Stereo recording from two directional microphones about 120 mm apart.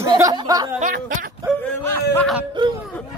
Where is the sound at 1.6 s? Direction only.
15° left (ahead or behind).